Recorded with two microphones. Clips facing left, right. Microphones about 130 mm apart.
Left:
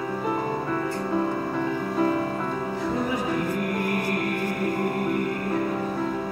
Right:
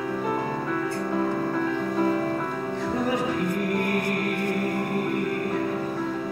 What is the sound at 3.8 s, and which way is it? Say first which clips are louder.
Music: even; 15° left (ahead or behind).